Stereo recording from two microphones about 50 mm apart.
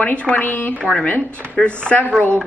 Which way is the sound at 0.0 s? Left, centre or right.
Left.